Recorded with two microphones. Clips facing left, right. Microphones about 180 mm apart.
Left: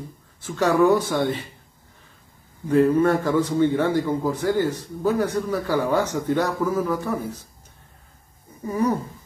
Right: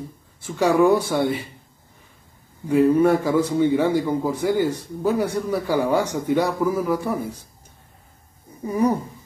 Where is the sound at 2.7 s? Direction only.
10° right (ahead or behind).